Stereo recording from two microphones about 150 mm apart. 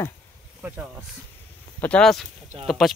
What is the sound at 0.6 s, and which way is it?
Speech, 10° right (ahead or behind).